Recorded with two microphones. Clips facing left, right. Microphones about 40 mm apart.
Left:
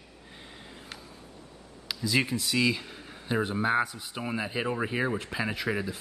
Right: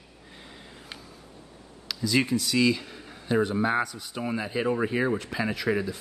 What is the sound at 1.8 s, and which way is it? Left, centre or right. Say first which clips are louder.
Speech: right 2 dB; centre.